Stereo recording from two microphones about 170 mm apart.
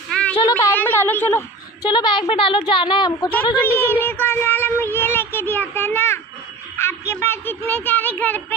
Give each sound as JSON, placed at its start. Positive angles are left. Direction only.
{"t": 0.4, "sound": "a sound", "side_deg": 20}
{"t": 1.8, "sound": "a woman's voice", "side_deg": 25}
{"t": 3.6, "sound": "speech", "side_deg": 10}